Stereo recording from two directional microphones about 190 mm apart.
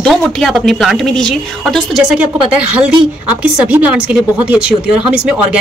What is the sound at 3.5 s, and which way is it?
Speech, 5° right (ahead or behind).